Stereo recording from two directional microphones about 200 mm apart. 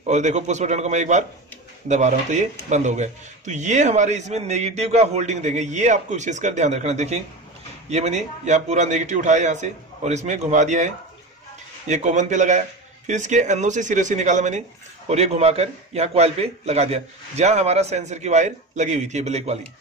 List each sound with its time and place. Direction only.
0.0 s speech: 35° right (ahead or behind)
11.9 s speech: 35° right (ahead or behind)